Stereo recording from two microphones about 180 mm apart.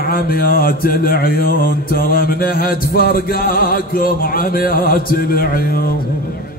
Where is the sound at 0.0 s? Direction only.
55° left (ahead or behind).